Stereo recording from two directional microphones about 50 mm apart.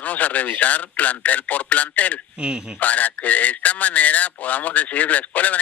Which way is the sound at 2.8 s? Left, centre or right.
Left.